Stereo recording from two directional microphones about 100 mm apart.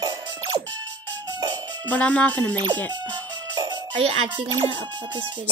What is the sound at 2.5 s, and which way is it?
Speech, 45° right (ahead or behind).